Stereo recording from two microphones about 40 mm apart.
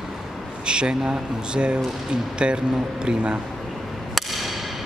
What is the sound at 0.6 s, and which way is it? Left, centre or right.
Speech, right.